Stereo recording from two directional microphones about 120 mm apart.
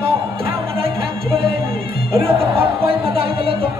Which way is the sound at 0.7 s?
50° right (ahead or behind).